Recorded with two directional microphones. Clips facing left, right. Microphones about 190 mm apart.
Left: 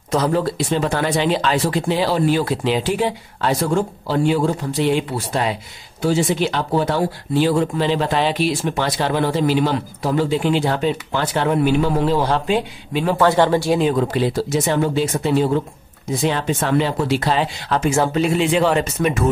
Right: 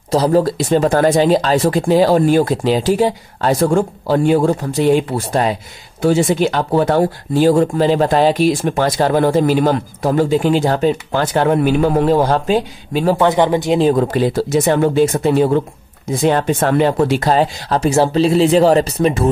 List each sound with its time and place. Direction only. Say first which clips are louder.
0.1 s speech: right 5 dB; 35° right (ahead or behind)
13.2 s speech: left 1 dB; 15° right (ahead or behind)
13.7 s speech: right 4 dB; 40° right (ahead or behind)